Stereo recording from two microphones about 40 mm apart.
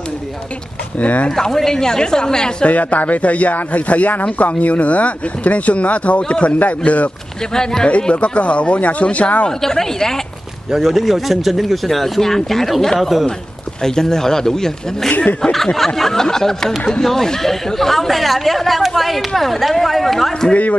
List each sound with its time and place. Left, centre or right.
0.9 s speech: left
1.3 s snicker: centre
2.6 s speech: left
7.5 s snicker: centre
8.1 s speech: left
9.5 s snicker: centre
10.7 s speech: centre
13.8 s snicker: centre
17.0 s speech: centre